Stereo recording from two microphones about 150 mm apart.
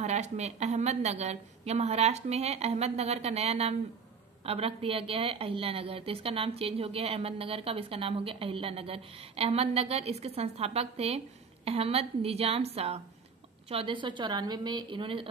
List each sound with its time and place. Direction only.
0.0 s a woman's voice: 50° right (ahead or behind)